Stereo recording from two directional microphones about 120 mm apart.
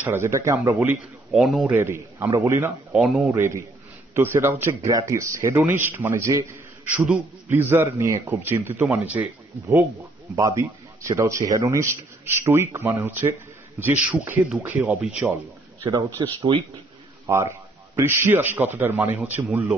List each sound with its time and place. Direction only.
0.0 s a man's voice: 20° right (ahead or behind)
1.3 s speech: 5° right (ahead or behind)
1.7 s a man's voice: 20° right (ahead or behind)
2.9 s speech: centre (ahead or behind)
3.3 s a man's voice: 20° right (ahead or behind)
6.8 s a man's voice: 10° right (ahead or behind)
10.3 s a man's voice: 25° right (ahead or behind)
16.3 s speech: 50° right (ahead or behind)
17.3 s a man's voice: 25° right (ahead or behind)